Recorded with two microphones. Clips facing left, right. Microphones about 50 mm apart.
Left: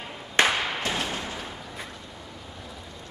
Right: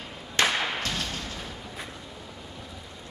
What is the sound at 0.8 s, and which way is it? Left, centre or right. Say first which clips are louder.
Thump: left 3 dB; left.